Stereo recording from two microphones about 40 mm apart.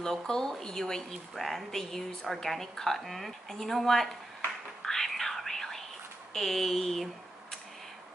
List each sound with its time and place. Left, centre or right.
0.0 s a woman's voice: centre
4.8 s whispering: centre
6.3 s a woman's voice: centre